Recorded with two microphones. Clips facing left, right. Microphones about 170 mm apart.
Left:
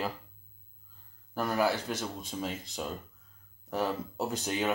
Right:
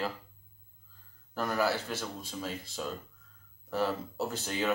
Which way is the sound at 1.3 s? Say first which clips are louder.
Left 1 dB; 10° left (ahead or behind).